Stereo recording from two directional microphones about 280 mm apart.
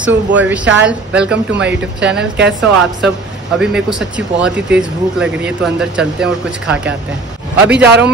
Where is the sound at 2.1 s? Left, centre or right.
Right.